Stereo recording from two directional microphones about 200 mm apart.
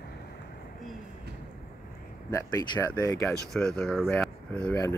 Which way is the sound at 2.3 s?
15° left (ahead or behind).